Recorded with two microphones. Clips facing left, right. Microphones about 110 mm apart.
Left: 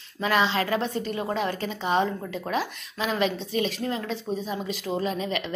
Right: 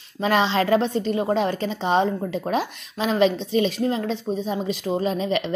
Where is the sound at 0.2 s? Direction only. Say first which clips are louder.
Right 4 dB; 25° right (ahead or behind).